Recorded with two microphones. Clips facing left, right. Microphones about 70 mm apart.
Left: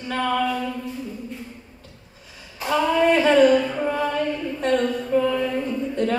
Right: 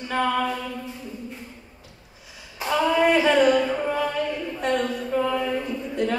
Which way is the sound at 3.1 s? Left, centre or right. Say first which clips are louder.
Left 4 dB; centre.